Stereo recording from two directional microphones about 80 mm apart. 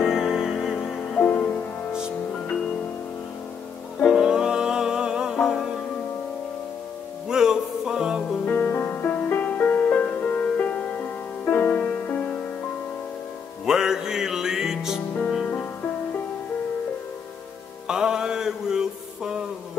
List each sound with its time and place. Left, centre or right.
0.0 s music: centre
0.9 s music: centre
4.0 s music: centre
7.2 s music: centre
8.5 s music: left
13.7 s music: centre
17.8 s music: centre